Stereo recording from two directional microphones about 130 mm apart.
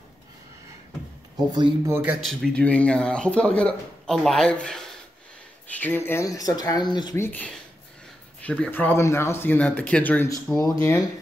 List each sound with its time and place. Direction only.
1.3 s speech: 30° right (ahead or behind)
1.9 s speech: 10° right (ahead or behind)
2.2 s speech: 5° left (ahead or behind)
5.8 s speech: 15° left (ahead or behind); by 7.2 s 35° left (ahead or behind)
7.2 s speech: 15° left (ahead or behind)
10.2 s speech: 25° left (ahead or behind)